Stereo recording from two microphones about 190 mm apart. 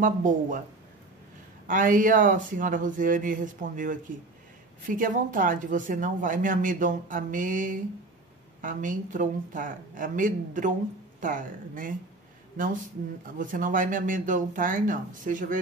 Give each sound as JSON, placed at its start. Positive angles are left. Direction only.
{"t": 0.0, "sound": "speech", "side_deg": -45}
{"t": 1.7, "sound": "speech", "side_deg": -45}
{"t": 13.4, "sound": "speech", "side_deg": -45}